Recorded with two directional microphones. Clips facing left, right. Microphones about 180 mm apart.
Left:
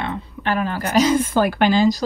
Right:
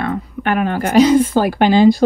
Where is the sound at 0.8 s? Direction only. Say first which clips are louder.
Right 7 dB; 50° right (ahead or behind).